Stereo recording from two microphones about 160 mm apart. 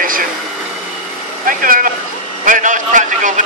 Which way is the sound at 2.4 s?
55° right (ahead or behind).